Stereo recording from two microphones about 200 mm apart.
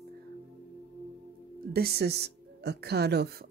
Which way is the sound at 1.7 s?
50° right (ahead or behind).